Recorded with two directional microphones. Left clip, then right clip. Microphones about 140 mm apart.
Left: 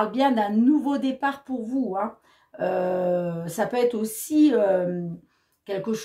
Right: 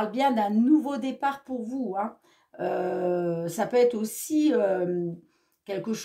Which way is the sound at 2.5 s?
35° right (ahead or behind).